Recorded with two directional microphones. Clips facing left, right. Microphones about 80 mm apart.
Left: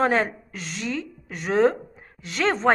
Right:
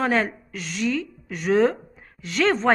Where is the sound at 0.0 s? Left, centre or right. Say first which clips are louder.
Left 1 dB; left.